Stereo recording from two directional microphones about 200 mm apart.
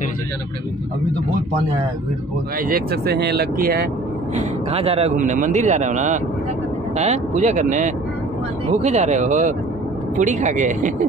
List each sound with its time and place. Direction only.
2.7 s speech: 50° right (ahead or behind)
4.4 s a man's voice: 30° right (ahead or behind)